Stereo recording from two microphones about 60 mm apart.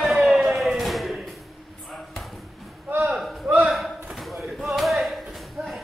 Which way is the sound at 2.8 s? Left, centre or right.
Right.